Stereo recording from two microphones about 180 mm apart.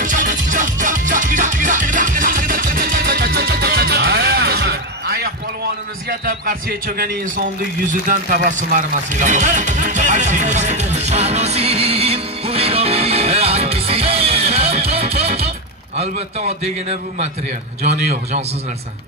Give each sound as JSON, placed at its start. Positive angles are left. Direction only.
{"t": 0.0, "sound": "music", "side_deg": -45}
{"t": 6.0, "sound": "a man's voice", "side_deg": -50}
{"t": 7.9, "sound": "a man's voice", "side_deg": -45}